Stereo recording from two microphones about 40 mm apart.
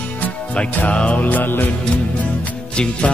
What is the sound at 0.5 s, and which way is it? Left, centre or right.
Music, left.